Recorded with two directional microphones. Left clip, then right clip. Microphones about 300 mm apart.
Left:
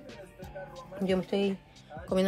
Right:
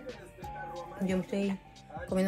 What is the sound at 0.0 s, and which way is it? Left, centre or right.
Music, centre.